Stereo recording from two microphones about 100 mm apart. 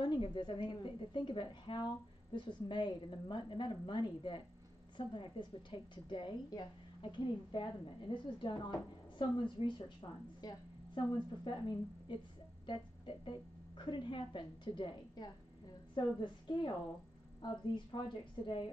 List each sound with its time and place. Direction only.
0.0 s a woman's voice: 50° left (ahead or behind)
10.4 s a woman's voice: 40° left (ahead or behind)
11.1 s a woman's voice: 50° left (ahead or behind)
12.6 s a woman's voice: 55° left (ahead or behind)